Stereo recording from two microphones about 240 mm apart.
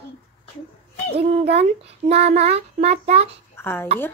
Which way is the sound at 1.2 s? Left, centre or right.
Right.